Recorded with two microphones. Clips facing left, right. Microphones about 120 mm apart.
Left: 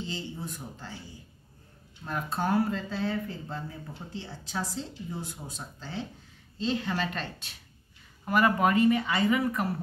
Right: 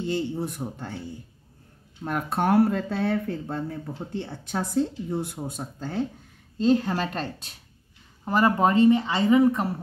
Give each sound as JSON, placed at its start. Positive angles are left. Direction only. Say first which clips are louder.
{"t": 0.0, "sound": "speech", "louder": "right 9 dB", "side_deg": -60}
{"t": 2.0, "sound": "a woman's voice", "louder": "right 6 dB", "side_deg": -65}